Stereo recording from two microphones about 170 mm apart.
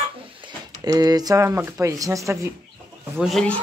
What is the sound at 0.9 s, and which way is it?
Speech, 20° right (ahead or behind).